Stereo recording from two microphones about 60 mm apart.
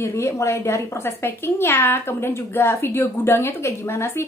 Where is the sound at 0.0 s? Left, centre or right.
Left.